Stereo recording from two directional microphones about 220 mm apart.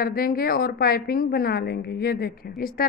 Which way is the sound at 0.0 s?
40° left (ahead or behind).